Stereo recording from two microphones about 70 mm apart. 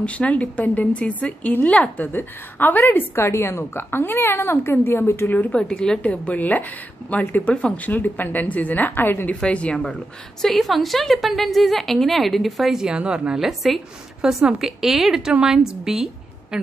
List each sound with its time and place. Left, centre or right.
0.0 s speech: centre
3.3 s a woman's voice: left
5.4 s a woman's voice: centre
6.3 s speech: left
9.4 s a woman's voice: centre
10.4 s a woman's voice: centre